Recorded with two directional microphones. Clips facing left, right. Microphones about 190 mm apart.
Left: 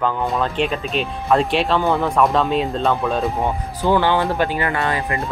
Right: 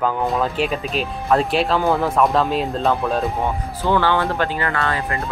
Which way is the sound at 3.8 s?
15° left (ahead or behind).